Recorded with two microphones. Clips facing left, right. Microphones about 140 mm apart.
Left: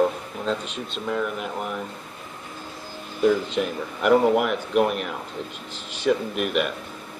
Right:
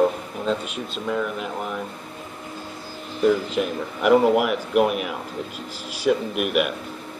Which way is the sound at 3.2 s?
5° right (ahead or behind).